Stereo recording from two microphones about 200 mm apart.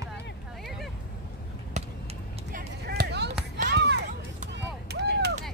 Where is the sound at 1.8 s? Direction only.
35° right (ahead or behind).